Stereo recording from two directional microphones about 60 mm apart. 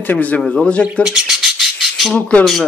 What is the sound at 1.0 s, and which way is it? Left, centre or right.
Squawk, centre.